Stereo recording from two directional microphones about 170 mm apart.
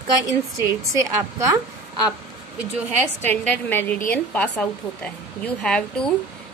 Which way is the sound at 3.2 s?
10° left (ahead or behind).